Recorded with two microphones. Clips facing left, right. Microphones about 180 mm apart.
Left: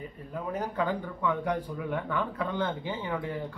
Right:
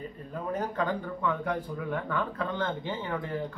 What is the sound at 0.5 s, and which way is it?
Speech, 10° left (ahead or behind).